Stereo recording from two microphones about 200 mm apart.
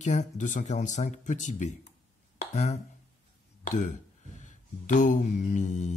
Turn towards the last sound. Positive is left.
turn(degrees=40)  # may be behind; listen again after turning